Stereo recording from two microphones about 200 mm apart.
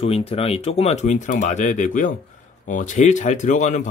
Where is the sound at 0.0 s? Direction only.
30° left (ahead or behind).